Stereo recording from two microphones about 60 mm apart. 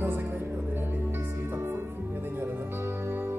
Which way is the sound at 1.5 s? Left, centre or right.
Right.